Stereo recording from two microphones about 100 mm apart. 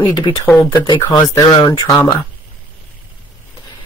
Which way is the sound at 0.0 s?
50° left (ahead or behind).